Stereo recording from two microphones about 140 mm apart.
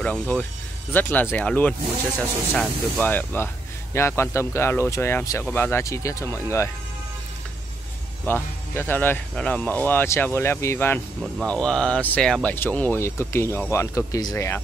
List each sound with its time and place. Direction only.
0.0 s speech: 10° left (ahead or behind)
3.1 s speech: 15° left (ahead or behind)
8.3 s speech: 15° left (ahead or behind)